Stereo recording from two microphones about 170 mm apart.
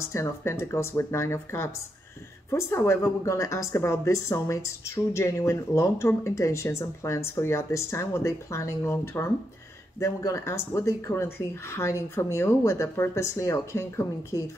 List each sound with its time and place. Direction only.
0.1 s a woman's voice: 15° left (ahead or behind)